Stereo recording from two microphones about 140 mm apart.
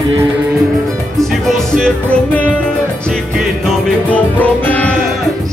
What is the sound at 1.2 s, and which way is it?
Music, centre (ahead or behind).